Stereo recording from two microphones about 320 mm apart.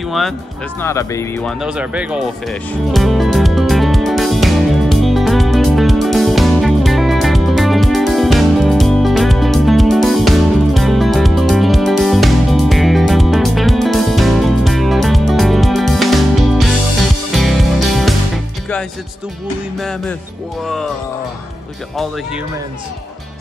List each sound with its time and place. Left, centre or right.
0.7 s speech: centre
2.9 s music: centre
19.8 s speech: centre